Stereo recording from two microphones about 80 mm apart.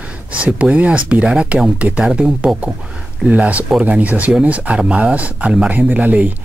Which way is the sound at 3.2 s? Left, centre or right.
Centre.